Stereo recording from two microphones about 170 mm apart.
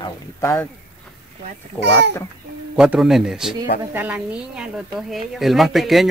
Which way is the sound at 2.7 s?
5° right (ahead or behind).